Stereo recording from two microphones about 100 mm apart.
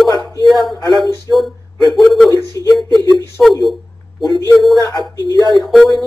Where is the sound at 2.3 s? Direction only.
35° left (ahead or behind).